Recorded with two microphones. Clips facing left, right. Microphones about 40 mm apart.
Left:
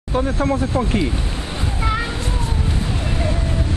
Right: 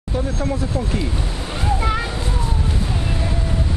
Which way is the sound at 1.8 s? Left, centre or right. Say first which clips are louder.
Left 4 dB; centre.